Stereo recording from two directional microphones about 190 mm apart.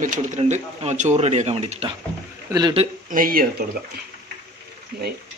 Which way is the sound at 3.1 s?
45° right (ahead or behind).